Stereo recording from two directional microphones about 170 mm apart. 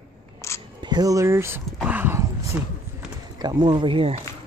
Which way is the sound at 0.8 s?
25° right (ahead or behind).